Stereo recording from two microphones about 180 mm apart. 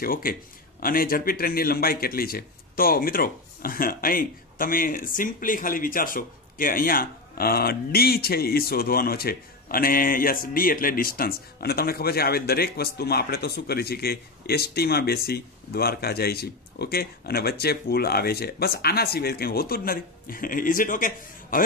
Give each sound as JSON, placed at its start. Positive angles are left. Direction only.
{"t": 0.0, "sound": "speech", "side_deg": 55}